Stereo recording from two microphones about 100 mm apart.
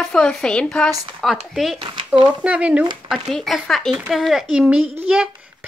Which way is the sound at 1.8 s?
55° right (ahead or behind).